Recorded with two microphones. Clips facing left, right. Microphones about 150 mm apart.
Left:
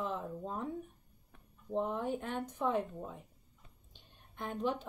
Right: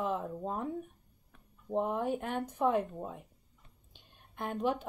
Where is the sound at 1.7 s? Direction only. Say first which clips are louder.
Right 3 dB; 45° right (ahead or behind).